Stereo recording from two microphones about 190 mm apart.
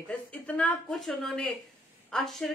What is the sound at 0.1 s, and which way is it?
A woman's voice, 5° left (ahead or behind).